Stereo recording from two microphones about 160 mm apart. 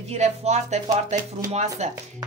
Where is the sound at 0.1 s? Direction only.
45° right (ahead or behind).